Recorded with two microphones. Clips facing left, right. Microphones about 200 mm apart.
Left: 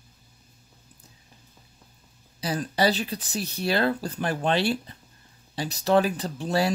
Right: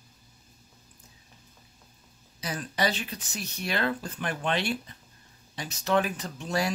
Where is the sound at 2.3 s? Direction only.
35° left (ahead or behind).